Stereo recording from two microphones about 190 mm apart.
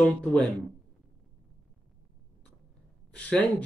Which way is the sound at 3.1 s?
5° left (ahead or behind).